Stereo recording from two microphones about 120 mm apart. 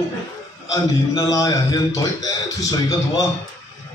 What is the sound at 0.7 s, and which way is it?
A man's voice, 30° left (ahead or behind).